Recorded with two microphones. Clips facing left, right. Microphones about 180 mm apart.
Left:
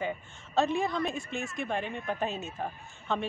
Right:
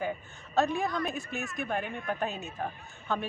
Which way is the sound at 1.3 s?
25° left (ahead or behind).